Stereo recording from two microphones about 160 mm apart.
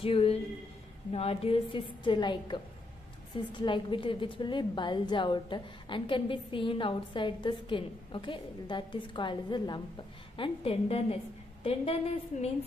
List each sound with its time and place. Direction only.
0.0 s a woman's voice: 35° left (ahead or behind)